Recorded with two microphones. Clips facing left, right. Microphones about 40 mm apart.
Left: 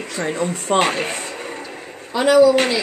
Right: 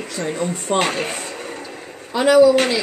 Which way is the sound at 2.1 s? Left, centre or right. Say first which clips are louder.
Even; centre.